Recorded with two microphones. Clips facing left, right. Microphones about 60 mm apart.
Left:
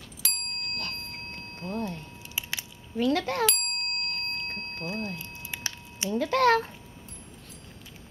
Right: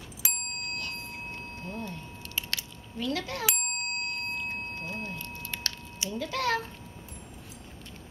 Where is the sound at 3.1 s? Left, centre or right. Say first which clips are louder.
Left 6 dB; left.